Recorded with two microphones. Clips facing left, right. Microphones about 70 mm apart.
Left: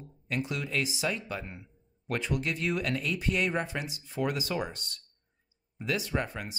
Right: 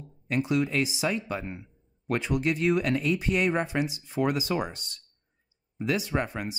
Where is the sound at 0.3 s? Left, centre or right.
Right.